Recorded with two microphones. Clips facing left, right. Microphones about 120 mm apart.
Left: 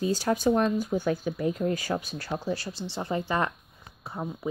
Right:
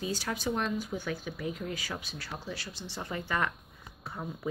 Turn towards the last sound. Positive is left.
turn(degrees=25)  # may be behind; listen again after turning